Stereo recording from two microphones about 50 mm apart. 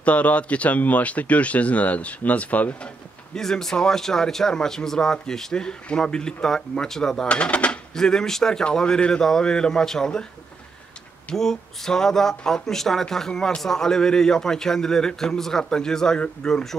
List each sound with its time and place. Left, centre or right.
0.0 s speech: left
3.3 s speech: centre
7.2 s speech: left
7.9 s speech: centre
11.3 s speech: centre